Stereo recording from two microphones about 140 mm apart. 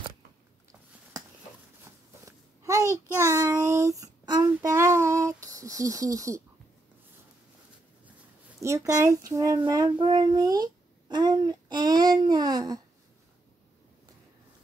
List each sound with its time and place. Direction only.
2.2 s babbling: 20° right (ahead or behind)
3.1 s child singing: 20° right (ahead or behind)
4.6 s speech: 20° right (ahead or behind)
8.5 s a child's voice: 20° right (ahead or behind)